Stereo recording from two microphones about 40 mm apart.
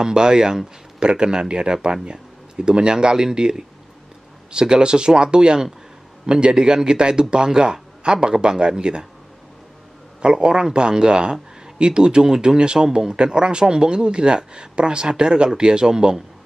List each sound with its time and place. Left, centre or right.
0.0 s speech: centre
10.2 s speech: right